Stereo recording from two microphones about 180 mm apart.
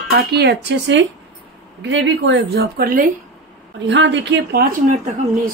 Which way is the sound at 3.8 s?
90° right.